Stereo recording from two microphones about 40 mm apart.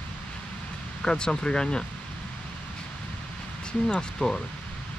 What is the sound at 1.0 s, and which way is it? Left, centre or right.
Speech, centre.